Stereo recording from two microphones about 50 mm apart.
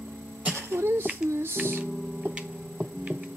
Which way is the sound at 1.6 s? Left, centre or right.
Right.